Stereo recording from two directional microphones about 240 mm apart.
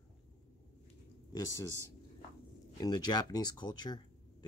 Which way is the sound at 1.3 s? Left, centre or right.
Centre.